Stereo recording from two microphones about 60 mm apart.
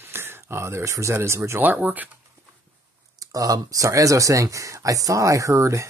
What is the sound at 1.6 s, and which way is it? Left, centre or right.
Speech, right.